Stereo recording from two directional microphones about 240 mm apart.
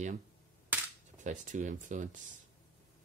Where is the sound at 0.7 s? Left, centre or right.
Centre.